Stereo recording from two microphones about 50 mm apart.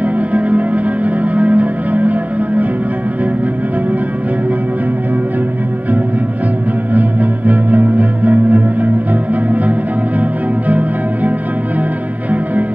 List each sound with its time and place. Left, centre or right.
0.0 s music: right
6.9 s music: right